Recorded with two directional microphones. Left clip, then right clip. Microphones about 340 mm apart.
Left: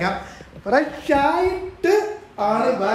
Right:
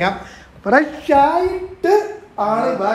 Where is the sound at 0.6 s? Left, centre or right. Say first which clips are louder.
Right 4 dB; right.